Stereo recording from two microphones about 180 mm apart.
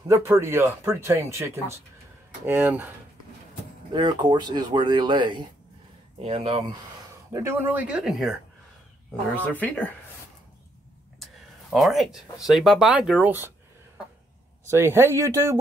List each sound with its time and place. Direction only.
0.1 s speech: 15° right (ahead or behind)
3.9 s speech: 25° right (ahead or behind)
7.3 s speech: 15° right (ahead or behind)
9.5 s speech: 10° left (ahead or behind)
11.7 s speech: centre (ahead or behind)
14.7 s speech: 15° right (ahead or behind)